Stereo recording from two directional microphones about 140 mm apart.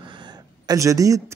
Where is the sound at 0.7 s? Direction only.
25° right (ahead or behind).